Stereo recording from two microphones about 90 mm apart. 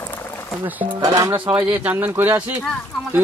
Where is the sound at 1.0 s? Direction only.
40° right (ahead or behind).